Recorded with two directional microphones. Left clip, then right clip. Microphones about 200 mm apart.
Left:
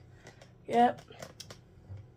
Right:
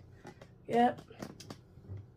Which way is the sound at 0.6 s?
20° left (ahead or behind).